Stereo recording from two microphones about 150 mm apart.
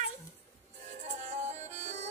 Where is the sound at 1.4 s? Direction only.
50° right (ahead or behind).